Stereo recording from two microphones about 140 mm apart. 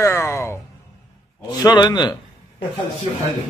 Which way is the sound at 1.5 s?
30° left (ahead or behind).